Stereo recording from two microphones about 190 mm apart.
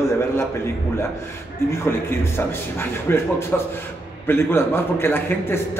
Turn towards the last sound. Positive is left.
turn(degrees=10)  # may be behind; listen again after turning